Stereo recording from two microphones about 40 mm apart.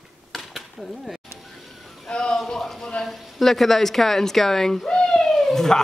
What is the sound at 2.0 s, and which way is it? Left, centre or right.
Speech, left.